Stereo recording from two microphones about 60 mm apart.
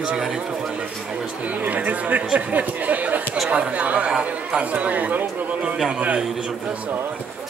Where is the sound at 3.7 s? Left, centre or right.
Centre.